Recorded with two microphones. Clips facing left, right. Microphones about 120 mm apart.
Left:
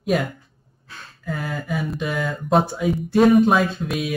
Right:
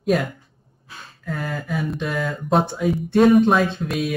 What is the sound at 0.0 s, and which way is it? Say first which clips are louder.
Speech: right 1 dB; centre (ahead or behind).